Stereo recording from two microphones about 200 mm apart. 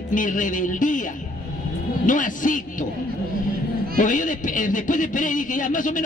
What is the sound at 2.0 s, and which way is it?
Speech, 40° left (ahead or behind).